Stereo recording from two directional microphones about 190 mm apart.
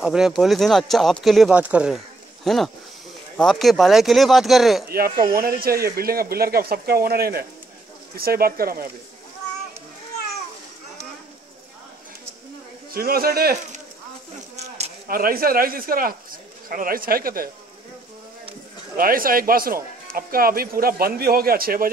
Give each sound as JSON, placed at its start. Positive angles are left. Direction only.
{"t": 0.0, "sound": "speech", "side_deg": -5}
{"t": 4.8, "sound": "speech", "side_deg": -50}
{"t": 12.9, "sound": "speech", "side_deg": -50}
{"t": 15.0, "sound": "speech", "side_deg": -50}
{"t": 18.9, "sound": "speech", "side_deg": -50}